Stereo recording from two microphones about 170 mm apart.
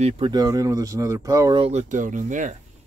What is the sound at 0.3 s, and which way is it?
Speech, 20° right (ahead or behind).